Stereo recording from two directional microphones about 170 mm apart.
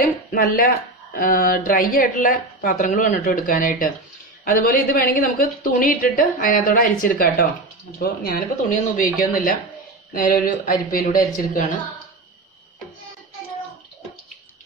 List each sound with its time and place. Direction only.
0.3 s a woman's voice: 60° left (ahead or behind)